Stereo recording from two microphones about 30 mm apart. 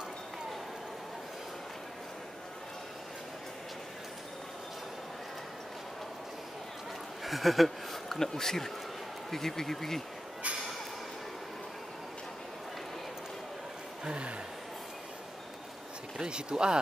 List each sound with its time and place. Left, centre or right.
7.2 s speech: centre
8.1 s speech: centre
14.0 s speech: right
16.2 s speech: right